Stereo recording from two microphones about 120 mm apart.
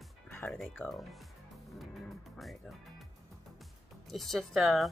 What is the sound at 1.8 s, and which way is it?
Music, centre (ahead or behind).